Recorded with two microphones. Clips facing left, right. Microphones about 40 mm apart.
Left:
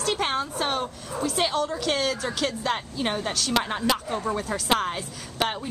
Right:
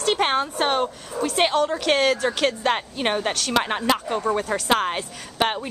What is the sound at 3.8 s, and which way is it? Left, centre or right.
Speech, right.